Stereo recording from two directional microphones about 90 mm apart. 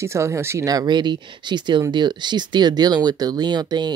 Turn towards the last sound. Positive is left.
turn(degrees=-55)  # may be behind; listen again after turning